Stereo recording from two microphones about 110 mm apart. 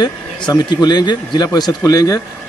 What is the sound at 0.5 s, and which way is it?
Speech, 40° left (ahead or behind).